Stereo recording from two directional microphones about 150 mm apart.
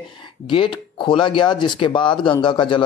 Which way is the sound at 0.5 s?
35° left (ahead or behind).